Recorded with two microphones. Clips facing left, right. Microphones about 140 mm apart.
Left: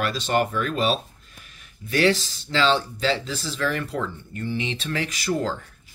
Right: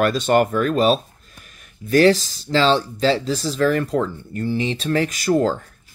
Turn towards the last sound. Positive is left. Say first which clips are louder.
# right 7 dB
turn(degrees=-45)  # may be behind; listen again after turning